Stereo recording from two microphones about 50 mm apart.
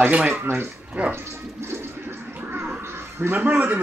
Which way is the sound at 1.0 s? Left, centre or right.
Right.